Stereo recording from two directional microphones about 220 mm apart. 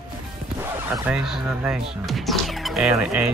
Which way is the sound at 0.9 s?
Centre (ahead or behind).